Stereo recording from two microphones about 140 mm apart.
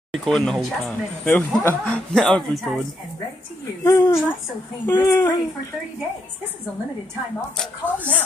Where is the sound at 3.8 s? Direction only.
25° left (ahead or behind).